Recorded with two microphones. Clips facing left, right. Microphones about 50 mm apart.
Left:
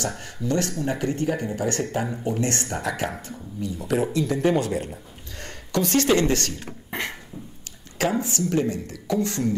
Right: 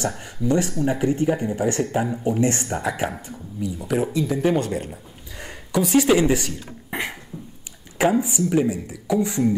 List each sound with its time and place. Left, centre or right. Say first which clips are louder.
0.1 s speech: right 4 dB; centre
6.9 s beatboxing: right 2 dB; centre
8.0 s speech: right 4 dB; centre